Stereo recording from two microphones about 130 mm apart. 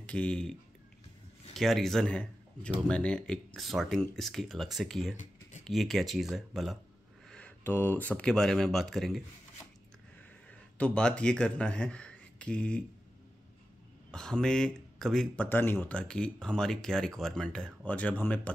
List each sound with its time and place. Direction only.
0.0 s speech: 10° left (ahead or behind)
10.5 s speech: 10° left (ahead or behind)
14.1 s speech: 5° left (ahead or behind)
15.4 s speech: 15° left (ahead or behind)